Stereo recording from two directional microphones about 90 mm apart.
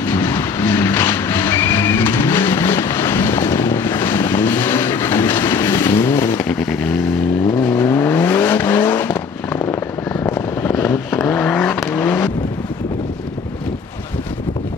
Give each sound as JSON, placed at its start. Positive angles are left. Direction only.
{"t": 0.0, "sound": "vehicle", "side_deg": 30}
{"t": 6.6, "sound": "vehicle", "side_deg": 15}
{"t": 11.1, "sound": "vehicle", "side_deg": 10}